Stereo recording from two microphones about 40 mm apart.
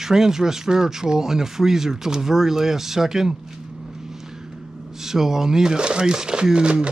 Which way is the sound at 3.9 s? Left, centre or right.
Centre.